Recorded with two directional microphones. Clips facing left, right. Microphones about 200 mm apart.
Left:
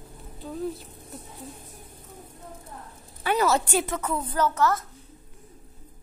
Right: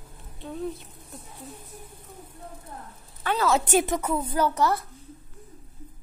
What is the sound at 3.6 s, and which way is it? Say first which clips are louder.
A woman's voice: right 3 dB; 20° right (ahead or behind).